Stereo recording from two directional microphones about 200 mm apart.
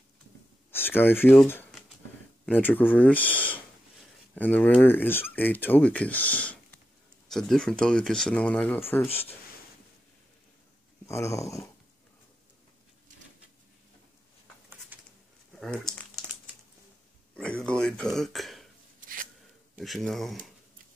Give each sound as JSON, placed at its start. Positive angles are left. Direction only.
{"t": 0.7, "sound": "speech", "side_deg": 10}
{"t": 11.1, "sound": "speech", "side_deg": 15}
{"t": 15.6, "sound": "speech", "side_deg": 0}
{"t": 17.4, "sound": "speech", "side_deg": 5}
{"t": 18.9, "sound": "a sound", "side_deg": -45}
{"t": 19.8, "sound": "speech", "side_deg": 0}